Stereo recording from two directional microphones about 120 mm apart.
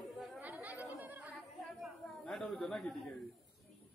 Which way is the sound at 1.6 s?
Centre (ahead or behind).